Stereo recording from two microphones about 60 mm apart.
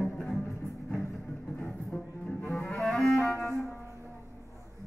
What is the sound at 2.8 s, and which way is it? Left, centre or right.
Music, centre.